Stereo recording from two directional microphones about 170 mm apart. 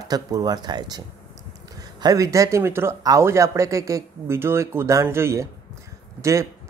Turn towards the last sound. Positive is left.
turn(degrees=-15)  # may be behind; listen again after turning